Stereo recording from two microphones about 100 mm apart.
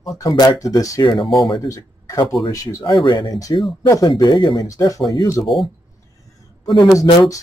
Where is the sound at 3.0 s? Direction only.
45° left (ahead or behind).